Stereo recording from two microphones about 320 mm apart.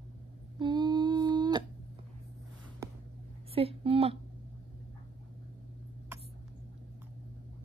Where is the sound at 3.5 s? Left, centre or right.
Centre.